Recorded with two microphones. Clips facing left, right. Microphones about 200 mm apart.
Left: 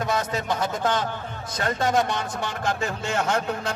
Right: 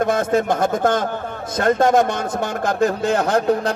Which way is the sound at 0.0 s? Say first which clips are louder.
Right 8 dB; 50° right (ahead or behind).